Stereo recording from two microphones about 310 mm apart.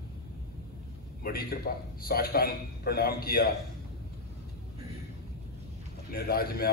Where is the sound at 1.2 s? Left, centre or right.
Left.